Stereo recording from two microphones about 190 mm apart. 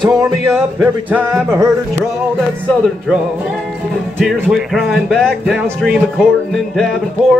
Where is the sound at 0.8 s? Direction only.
10° right (ahead or behind).